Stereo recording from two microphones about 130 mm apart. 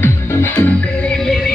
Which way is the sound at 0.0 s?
15° left (ahead or behind).